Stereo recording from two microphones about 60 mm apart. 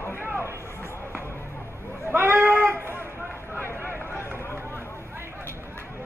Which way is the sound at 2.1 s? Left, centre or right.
Right.